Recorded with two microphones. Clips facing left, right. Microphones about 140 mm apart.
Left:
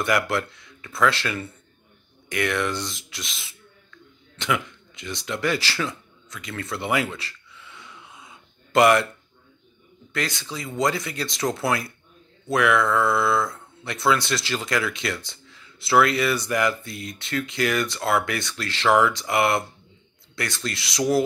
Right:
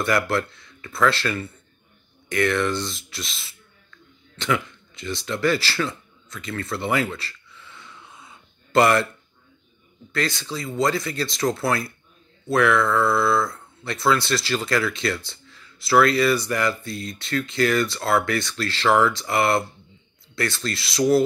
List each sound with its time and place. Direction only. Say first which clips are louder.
0.0 s speech: right 1 dB; 15° left (ahead or behind)
4.4 s a sound: right 2 dB; 15° left (ahead or behind)
10.1 s speech: right 3 dB; 15° left (ahead or behind)